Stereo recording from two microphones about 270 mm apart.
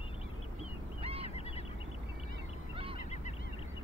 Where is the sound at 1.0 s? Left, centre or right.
Right.